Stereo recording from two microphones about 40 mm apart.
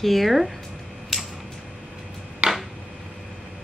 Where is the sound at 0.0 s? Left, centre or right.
Centre.